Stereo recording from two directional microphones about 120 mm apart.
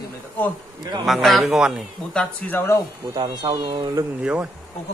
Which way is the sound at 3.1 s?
35° right (ahead or behind).